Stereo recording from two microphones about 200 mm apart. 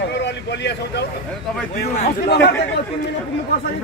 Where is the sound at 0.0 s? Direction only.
60° left (ahead or behind).